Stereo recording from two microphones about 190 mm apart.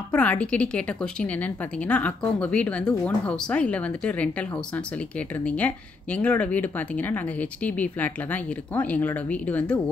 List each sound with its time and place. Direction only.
0.1 s speech: 5° left (ahead or behind)